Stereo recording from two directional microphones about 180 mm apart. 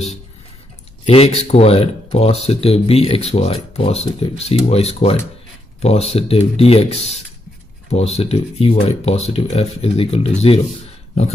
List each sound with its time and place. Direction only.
1.0 s speech: 35° left (ahead or behind)